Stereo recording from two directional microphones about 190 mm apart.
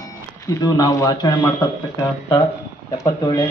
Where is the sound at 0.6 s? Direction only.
20° left (ahead or behind).